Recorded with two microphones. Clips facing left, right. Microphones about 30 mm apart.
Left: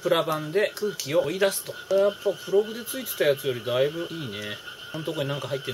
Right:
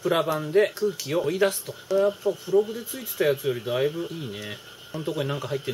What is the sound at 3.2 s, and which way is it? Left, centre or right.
Speech, centre.